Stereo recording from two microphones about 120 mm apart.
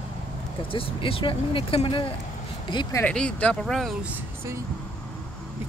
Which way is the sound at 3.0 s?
10° left (ahead or behind).